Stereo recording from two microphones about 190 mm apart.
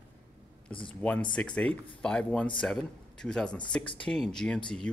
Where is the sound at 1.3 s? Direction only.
5° left (ahead or behind).